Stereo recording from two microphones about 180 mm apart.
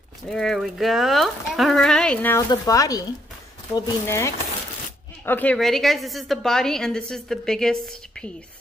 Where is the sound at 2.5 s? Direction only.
20° left (ahead or behind); by 8.3 s 5° left (ahead or behind).